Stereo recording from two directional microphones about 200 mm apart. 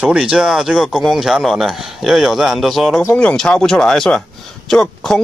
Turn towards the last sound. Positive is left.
turn(degrees=0)  # may be behind; listen again after turning